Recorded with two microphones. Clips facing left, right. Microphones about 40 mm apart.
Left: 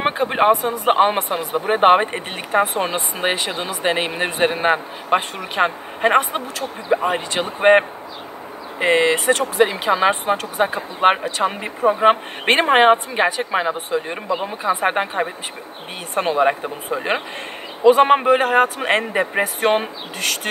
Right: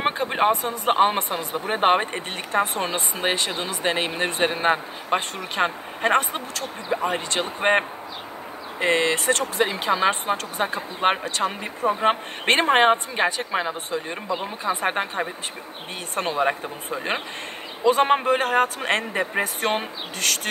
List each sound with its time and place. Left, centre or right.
0.0 s speech: centre
16.3 s speech: centre